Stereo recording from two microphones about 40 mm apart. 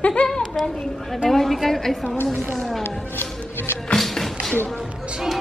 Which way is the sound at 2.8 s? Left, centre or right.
Left.